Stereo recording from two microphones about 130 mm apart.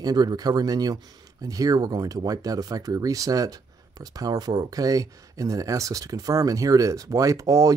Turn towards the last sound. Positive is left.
turn(degrees=-25)  # may be behind; listen again after turning